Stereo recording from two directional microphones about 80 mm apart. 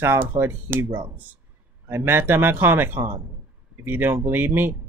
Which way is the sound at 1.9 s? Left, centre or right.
Right.